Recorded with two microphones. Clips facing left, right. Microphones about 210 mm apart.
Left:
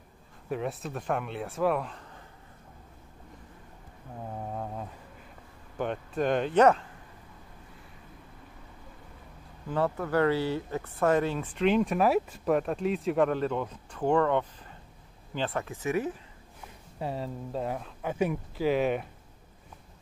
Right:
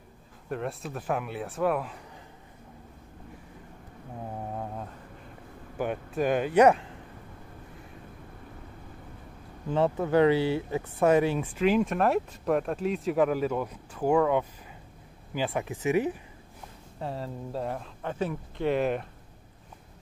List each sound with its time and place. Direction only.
0.5 s speech: centre (ahead or behind)
5.8 s speech: 5° right (ahead or behind)
9.7 s speech: 20° right (ahead or behind)
11.6 s speech: centre (ahead or behind)
17.0 s speech: centre (ahead or behind)